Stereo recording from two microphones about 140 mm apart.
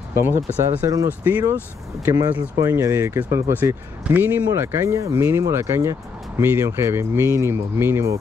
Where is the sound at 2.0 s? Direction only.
25° right (ahead or behind).